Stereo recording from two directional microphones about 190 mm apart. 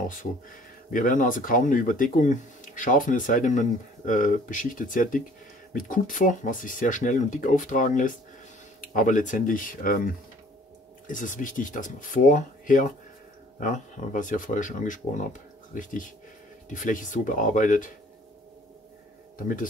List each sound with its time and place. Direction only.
0.8 s speech: 45° left (ahead or behind)
19.3 s speech: 45° left (ahead or behind)